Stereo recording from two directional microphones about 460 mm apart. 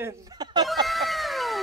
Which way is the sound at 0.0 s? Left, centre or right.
Centre.